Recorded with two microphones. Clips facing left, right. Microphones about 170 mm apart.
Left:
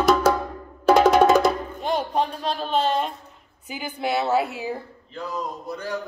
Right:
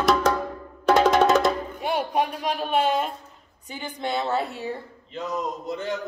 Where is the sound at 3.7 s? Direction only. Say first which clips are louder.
Left 3 dB; 10° left (ahead or behind).